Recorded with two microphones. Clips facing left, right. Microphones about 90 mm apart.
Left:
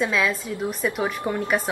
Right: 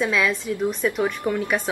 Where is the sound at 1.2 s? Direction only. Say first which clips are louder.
Right 2 dB; 20° left (ahead or behind).